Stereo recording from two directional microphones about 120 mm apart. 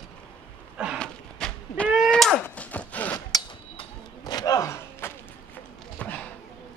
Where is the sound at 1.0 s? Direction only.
10° left (ahead or behind).